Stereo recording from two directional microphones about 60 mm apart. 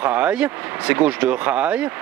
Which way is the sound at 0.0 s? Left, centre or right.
Right.